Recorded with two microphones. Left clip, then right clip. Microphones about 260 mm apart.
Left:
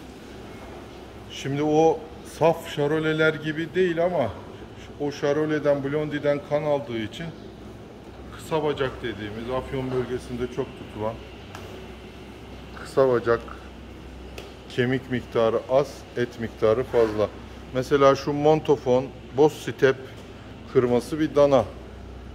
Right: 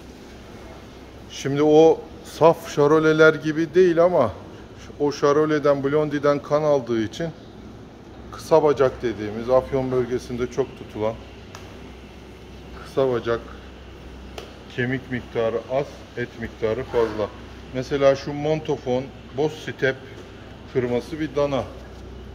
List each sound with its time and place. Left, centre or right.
1.4 s speech: centre
8.5 s speech: centre
10.1 s speech: centre
12.9 s speech: centre
14.8 s speech: centre